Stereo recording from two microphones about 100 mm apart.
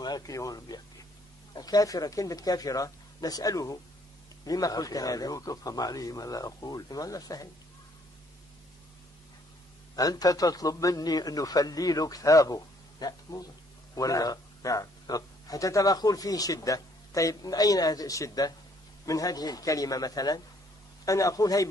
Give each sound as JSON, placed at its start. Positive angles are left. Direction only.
{"t": 0.0, "sound": "speech", "side_deg": 40}
{"t": 9.9, "sound": "speech", "side_deg": 40}